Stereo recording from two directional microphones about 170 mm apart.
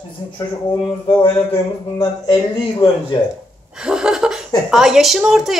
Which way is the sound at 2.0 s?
25° left (ahead or behind).